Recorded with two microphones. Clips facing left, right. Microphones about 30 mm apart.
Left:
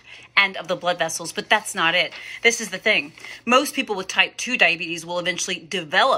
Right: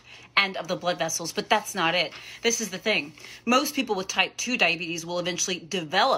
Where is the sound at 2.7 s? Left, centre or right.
Centre.